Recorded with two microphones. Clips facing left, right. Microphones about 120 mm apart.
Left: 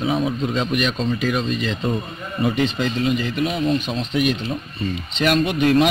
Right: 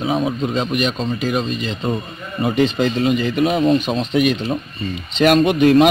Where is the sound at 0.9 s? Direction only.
30° right (ahead or behind).